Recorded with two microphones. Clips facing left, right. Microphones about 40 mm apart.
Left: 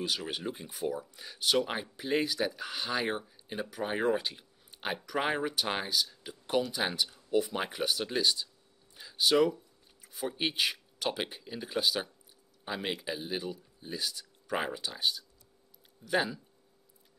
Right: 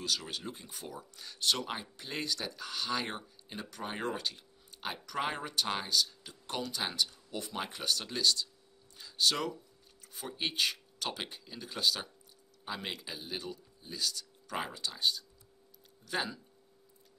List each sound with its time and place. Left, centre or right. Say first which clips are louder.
0.0 s speech: left 3 dB; left